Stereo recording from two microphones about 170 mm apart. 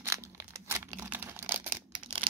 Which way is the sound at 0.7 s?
10° right (ahead or behind).